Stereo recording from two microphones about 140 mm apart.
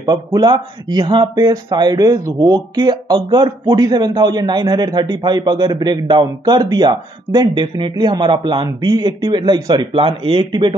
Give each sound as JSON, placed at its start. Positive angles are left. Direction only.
{"t": 0.0, "sound": "speech", "side_deg": -30}